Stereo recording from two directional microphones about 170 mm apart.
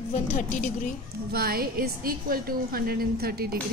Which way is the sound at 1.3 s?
60° right (ahead or behind).